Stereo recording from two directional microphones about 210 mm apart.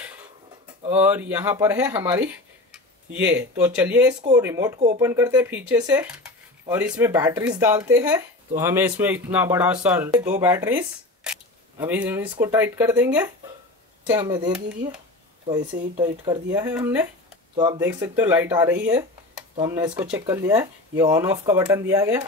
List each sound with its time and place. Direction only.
0.9 s speech: 10° right (ahead or behind)